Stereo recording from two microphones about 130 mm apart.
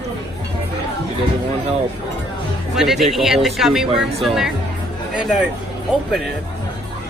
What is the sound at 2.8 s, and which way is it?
Speech, centre (ahead or behind).